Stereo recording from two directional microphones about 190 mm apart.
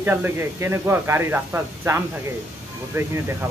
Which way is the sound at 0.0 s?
10° right (ahead or behind).